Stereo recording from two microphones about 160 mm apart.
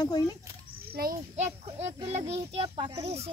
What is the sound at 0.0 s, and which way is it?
Speech, 25° left (ahead or behind).